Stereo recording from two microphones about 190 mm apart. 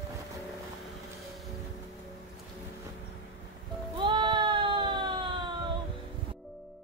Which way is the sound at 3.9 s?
25° right (ahead or behind).